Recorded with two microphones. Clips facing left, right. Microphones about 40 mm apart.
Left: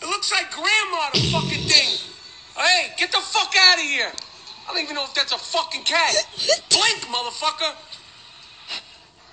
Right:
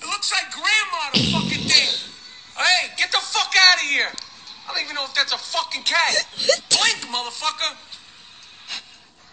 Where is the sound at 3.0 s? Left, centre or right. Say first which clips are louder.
Right 1 dB; centre.